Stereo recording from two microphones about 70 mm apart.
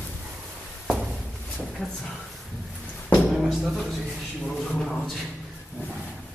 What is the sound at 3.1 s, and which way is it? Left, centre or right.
Music, centre.